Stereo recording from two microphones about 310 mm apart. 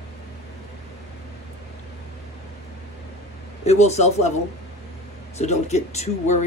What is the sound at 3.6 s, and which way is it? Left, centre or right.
Speech, left.